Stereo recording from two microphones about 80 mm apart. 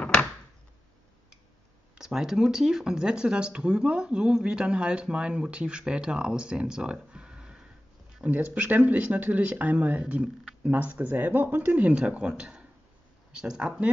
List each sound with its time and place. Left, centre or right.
2.0 s speech: centre